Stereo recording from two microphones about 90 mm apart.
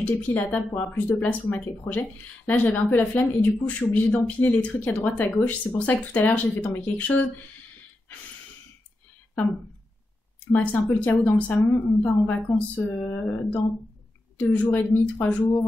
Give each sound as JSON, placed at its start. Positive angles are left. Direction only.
{"t": 0.0, "sound": "speech", "side_deg": 15}
{"t": 3.8, "sound": "speech", "side_deg": 45}
{"t": 4.2, "sound": "speech", "side_deg": 15}
{"t": 10.5, "sound": "a woman's voice", "side_deg": 15}